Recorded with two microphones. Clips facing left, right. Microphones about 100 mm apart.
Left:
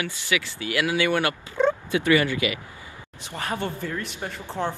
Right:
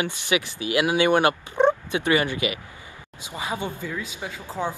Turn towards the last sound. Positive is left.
turn(degrees=-10)  # may be behind; listen again after turning